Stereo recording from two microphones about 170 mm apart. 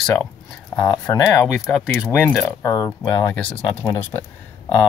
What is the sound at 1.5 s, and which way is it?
Speech, centre (ahead or behind).